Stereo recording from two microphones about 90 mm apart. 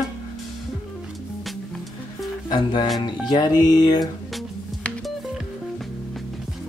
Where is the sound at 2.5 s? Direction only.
60° left (ahead or behind).